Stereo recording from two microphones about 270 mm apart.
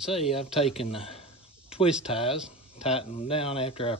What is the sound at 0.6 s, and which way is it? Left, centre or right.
Speech, left.